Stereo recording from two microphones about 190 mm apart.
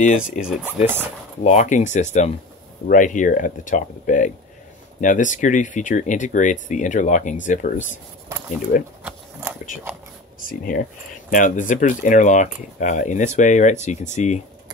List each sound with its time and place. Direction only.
0.0 s speech: 45° left (ahead or behind)
0.4 s speech: 5° right (ahead or behind)
1.4 s speech: 35° left (ahead or behind)
9.0 s a sound: 5° right (ahead or behind)
10.4 s speech: 45° left (ahead or behind)